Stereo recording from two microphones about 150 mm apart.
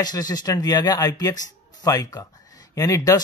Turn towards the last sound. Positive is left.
turn(degrees=25)  # may be behind; listen again after turning